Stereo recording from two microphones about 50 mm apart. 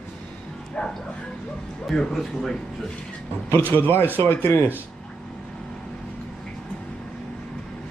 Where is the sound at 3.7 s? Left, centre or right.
Left.